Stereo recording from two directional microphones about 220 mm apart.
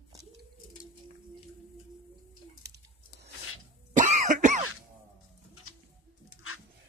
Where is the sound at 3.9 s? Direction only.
35° right (ahead or behind).